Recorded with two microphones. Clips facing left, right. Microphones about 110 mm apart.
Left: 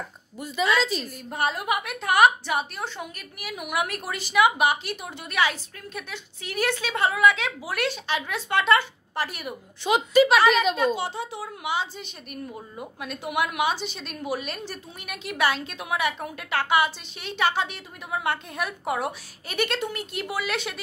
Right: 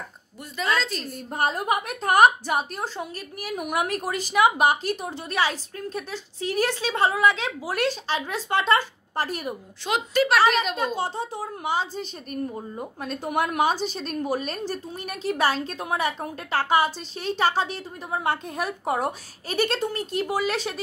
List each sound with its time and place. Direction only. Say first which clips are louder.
0.7 s a woman's voice: left 3 dB; 5° left (ahead or behind)
1.1 s a woman's voice: right 2 dB; 40° right (ahead or behind)
9.8 s a woman's voice: left 4 dB; 5° left (ahead or behind)
11.0 s a woman's voice: right 2 dB; 45° right (ahead or behind)